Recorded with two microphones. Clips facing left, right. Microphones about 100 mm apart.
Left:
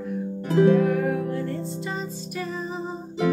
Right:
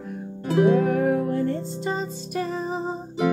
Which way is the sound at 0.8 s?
35° right (ahead or behind).